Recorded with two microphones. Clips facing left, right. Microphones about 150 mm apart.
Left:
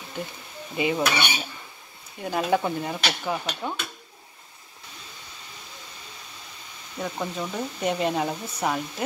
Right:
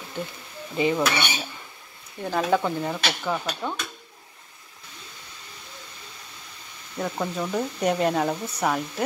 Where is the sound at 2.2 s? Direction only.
15° left (ahead or behind).